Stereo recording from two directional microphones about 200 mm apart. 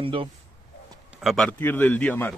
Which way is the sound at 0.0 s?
25° right (ahead or behind).